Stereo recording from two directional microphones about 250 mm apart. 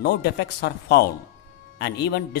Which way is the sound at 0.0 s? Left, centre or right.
Left.